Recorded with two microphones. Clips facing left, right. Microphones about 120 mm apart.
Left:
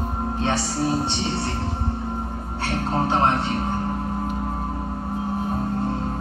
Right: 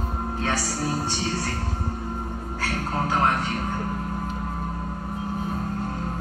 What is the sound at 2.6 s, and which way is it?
Speech, 25° left (ahead or behind).